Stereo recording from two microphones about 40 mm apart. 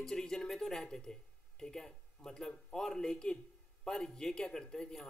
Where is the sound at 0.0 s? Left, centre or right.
Centre.